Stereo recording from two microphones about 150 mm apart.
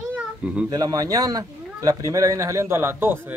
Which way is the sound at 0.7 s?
25° right (ahead or behind).